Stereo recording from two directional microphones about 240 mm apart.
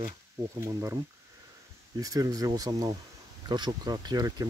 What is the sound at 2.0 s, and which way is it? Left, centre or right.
Speech, centre.